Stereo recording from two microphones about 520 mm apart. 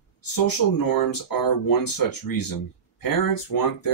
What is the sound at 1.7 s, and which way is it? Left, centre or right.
Speech, left.